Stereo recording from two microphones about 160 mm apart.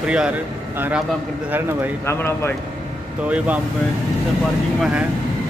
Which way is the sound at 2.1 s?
15° left (ahead or behind).